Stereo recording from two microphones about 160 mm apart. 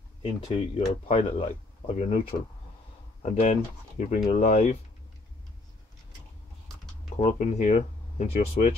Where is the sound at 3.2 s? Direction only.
45° left (ahead or behind).